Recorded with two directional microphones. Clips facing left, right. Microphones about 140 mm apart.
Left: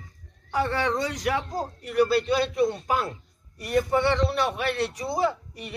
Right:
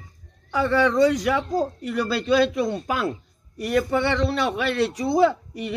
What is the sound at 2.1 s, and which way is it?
Speech, 90° right.